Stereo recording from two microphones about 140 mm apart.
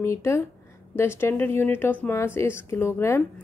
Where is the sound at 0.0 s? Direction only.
20° left (ahead or behind).